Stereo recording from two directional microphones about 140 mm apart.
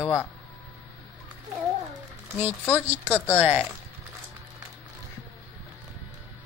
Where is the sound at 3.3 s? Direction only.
10° right (ahead or behind).